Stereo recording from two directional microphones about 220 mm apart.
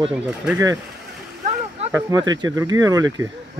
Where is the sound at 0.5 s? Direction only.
15° right (ahead or behind).